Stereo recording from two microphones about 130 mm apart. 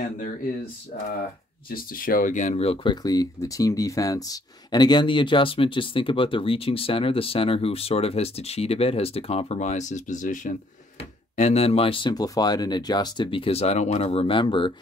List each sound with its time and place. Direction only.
1.8 s speech: 90° left; by 10.6 s 75° left (ahead or behind)
11.0 s speech: 60° left (ahead or behind); by 14.7 s 40° left (ahead or behind)